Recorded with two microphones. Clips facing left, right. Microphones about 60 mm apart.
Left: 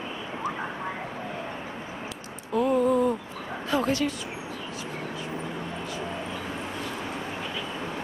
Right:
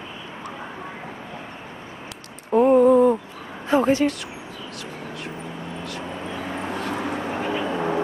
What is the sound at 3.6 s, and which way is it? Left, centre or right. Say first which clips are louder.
Bow-wow: right 7 dB; right.